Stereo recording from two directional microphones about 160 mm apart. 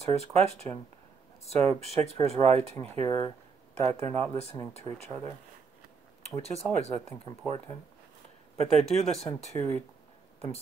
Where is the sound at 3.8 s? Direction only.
40° right (ahead or behind).